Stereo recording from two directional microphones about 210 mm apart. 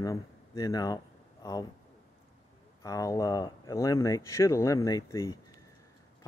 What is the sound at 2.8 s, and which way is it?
Speech, 15° left (ahead or behind).